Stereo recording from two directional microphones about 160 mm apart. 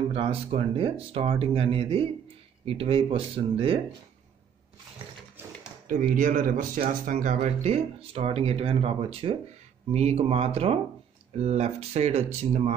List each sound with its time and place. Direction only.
0.1 s speech: 35° right (ahead or behind)
5.6 s a sound: 50° right (ahead or behind)
6.1 s speech: 55° right (ahead or behind)